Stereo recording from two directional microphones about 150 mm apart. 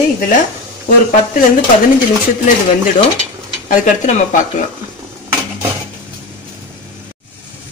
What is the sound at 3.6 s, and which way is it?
Speech, 60° left (ahead or behind).